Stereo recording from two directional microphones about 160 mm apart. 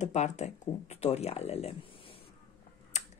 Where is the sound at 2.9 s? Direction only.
45° left (ahead or behind).